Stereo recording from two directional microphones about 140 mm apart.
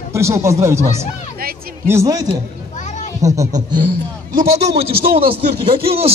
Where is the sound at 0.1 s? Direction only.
20° right (ahead or behind).